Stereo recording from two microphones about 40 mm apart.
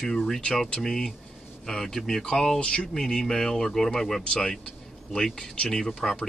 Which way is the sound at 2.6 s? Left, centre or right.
Left.